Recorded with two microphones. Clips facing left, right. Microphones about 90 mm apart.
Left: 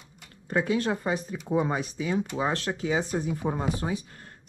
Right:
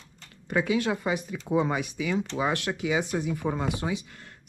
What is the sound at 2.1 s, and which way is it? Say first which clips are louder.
Speech: even; 15° left (ahead or behind).